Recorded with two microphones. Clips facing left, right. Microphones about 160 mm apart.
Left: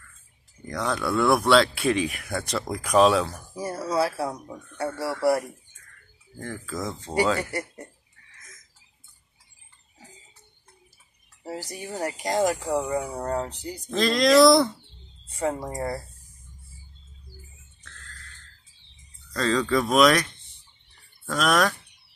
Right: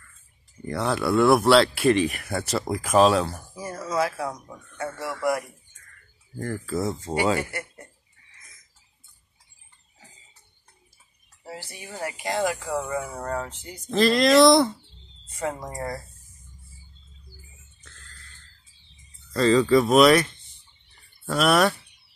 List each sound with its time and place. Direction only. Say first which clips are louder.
0.7 s speech: right 3 dB; 5° right (ahead or behind)
3.5 s speech: left 2 dB; 35° left (ahead or behind)
6.3 s speech: right 5 dB; 10° right (ahead or behind)
11.4 s speech: left 5 dB; 40° left (ahead or behind)
12.6 s speech: left 2 dB; 15° left (ahead or behind)
13.5 s speech: left 6 dB; 35° left (ahead or behind)
13.8 s speech: right 2 dB; centre (ahead or behind)
15.2 s a sound: left 3 dB; 30° left (ahead or behind)
19.3 s speech: right 5 dB; 5° right (ahead or behind)
21.3 s speech: right 3 dB; 5° right (ahead or behind)